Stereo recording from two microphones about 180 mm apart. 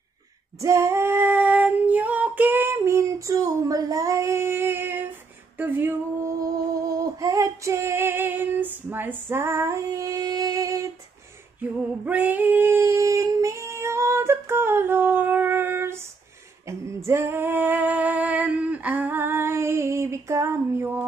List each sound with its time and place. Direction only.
0.6 s female singing: 15° right (ahead or behind)
5.6 s a sound: 10° right (ahead or behind)
12.0 s female singing: 10° right (ahead or behind)